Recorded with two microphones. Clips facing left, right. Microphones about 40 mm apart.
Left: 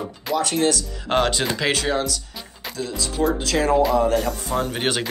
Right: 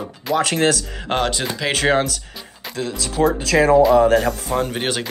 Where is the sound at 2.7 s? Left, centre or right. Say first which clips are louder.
Right 3 dB; right.